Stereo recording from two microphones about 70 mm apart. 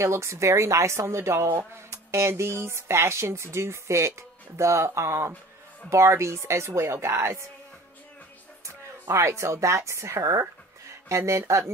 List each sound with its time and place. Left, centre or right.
0.0 s a woman's voice: right
8.6 s speech: right